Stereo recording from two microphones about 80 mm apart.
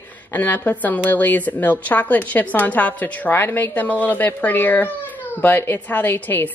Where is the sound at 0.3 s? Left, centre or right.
Left.